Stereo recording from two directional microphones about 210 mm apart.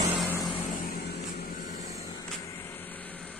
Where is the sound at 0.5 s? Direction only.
20° left (ahead or behind).